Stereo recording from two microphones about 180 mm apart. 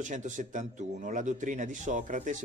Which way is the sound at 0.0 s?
45° right (ahead or behind).